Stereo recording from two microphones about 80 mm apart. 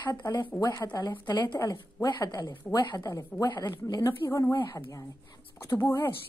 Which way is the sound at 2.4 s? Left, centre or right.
Left.